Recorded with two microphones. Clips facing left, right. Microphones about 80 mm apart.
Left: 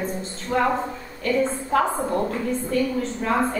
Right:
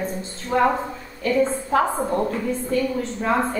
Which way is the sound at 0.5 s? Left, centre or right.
Right.